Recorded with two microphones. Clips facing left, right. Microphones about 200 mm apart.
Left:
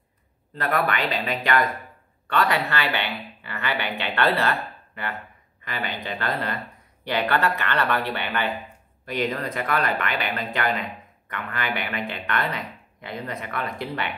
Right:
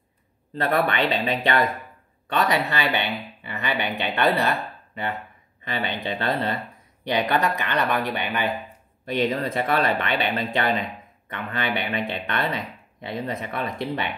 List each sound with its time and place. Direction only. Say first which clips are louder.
0.6 s speech: right 2 dB; 30° right (ahead or behind)